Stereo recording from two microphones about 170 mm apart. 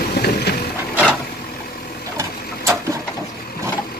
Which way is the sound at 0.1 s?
70° left (ahead or behind).